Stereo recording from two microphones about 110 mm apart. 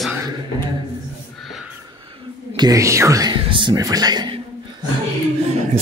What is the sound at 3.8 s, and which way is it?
Speech, 35° right (ahead or behind).